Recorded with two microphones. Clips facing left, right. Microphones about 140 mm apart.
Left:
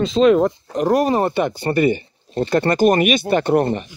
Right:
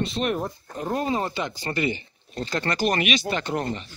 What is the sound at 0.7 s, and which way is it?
Speech, 80° left.